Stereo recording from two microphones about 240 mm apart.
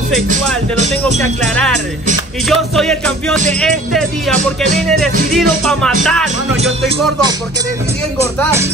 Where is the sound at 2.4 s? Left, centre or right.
Centre.